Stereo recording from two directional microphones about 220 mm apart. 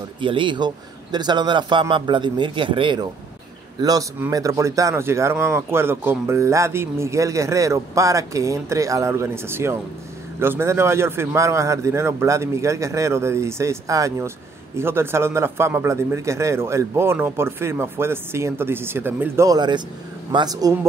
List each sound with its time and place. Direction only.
0.2 s a man's voice: 20° right (ahead or behind)